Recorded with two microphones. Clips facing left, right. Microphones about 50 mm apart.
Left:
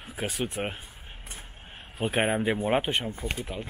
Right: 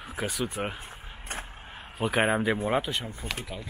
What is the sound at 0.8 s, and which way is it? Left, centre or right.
Vehicle, right.